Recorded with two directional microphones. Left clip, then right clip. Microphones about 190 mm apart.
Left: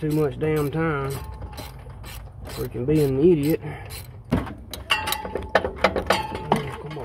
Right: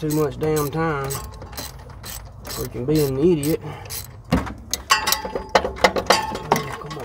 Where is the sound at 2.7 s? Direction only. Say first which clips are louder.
Right 1 dB; 5° right (ahead or behind).